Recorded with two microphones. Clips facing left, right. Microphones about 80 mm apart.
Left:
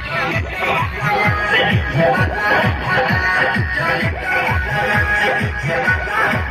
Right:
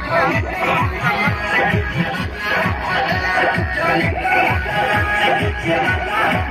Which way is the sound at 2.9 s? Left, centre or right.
Centre.